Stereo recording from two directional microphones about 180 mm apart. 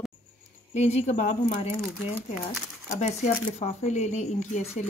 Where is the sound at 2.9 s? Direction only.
40° left (ahead or behind).